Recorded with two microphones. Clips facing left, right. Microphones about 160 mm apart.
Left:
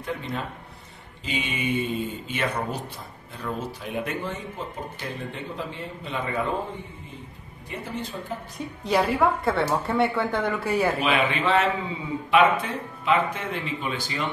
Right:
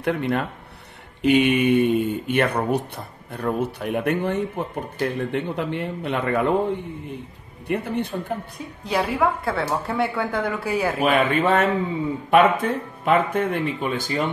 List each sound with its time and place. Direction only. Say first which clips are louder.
0.0 s speech: right 8 dB; 70° right (ahead or behind)
8.8 s a woman's voice: even; 5° right (ahead or behind)
11.0 s speech: right 5 dB; 50° right (ahead or behind)